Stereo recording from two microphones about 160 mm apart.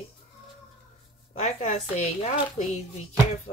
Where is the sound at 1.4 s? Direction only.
45° left (ahead or behind).